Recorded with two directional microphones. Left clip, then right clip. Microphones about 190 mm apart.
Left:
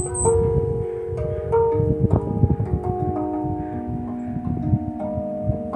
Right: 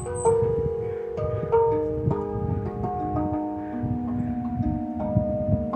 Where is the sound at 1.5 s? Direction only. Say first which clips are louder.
Left 2 dB; 20° left (ahead or behind).